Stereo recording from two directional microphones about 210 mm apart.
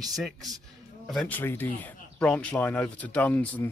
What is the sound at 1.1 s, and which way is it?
Speech, 5° left (ahead or behind).